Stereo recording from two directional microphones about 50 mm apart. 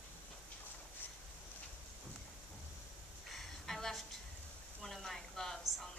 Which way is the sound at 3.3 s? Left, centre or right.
Centre.